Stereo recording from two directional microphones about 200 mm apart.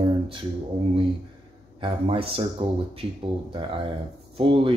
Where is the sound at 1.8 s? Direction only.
25° right (ahead or behind).